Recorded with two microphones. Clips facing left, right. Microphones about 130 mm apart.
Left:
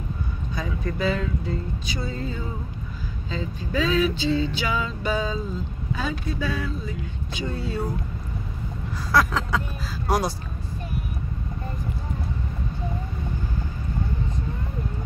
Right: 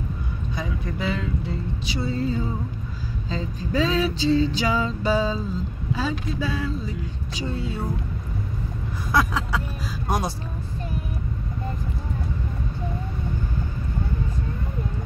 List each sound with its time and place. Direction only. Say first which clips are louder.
0.6 s speech: left 3 dB; 20° right (ahead or behind)
3.3 s a sound: right 1 dB; 35° right (ahead or behind)
5.9 s speech: right 1 dB; 30° right (ahead or behind)
9.1 s vehicle: left 1 dB; 10° right (ahead or behind)
10.0 s speech: left 2 dB; 25° right (ahead or behind)